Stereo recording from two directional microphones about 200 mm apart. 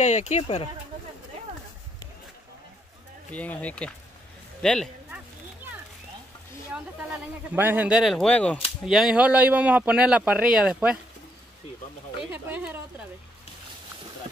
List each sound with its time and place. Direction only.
0.0 s speech: 35° left (ahead or behind)
3.3 s speech: 5° left (ahead or behind)
4.6 s a sound: 5° left (ahead or behind)
6.7 s speech: 10° right (ahead or behind)
12.3 s speech: 10° right (ahead or behind)